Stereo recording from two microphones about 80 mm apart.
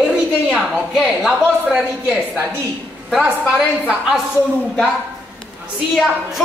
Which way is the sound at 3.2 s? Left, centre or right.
Centre.